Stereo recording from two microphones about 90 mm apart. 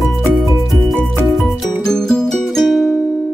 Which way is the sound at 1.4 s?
5° left (ahead or behind).